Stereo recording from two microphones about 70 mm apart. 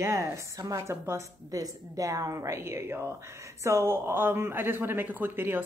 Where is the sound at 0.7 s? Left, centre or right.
Right.